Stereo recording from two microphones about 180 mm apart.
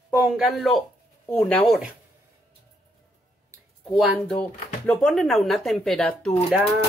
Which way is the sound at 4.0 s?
5° left (ahead or behind).